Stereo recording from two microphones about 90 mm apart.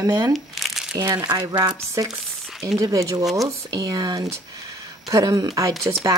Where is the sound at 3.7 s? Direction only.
45° right (ahead or behind).